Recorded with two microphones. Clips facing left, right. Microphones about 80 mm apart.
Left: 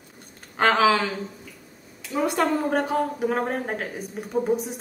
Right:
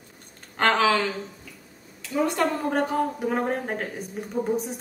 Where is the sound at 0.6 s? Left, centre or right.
Centre.